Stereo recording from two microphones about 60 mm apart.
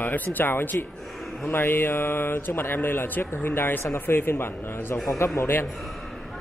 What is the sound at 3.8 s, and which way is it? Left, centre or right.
Speech, left.